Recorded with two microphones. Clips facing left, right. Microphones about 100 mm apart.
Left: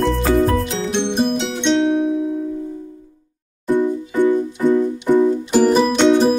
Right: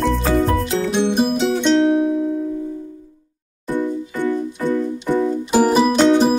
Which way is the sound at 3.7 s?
15° left (ahead or behind).